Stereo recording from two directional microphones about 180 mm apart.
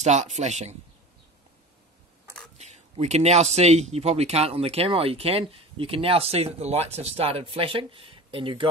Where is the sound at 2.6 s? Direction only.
35° right (ahead or behind).